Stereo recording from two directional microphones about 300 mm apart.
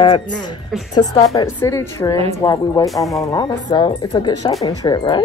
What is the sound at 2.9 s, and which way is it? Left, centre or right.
Speech, centre.